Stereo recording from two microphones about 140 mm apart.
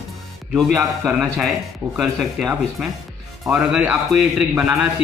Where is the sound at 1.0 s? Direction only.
10° right (ahead or behind).